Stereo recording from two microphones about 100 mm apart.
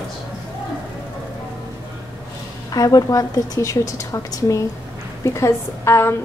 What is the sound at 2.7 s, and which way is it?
A woman's voice, 40° left (ahead or behind).